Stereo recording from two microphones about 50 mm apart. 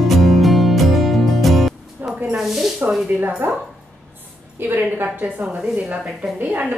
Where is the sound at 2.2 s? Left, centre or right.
Centre.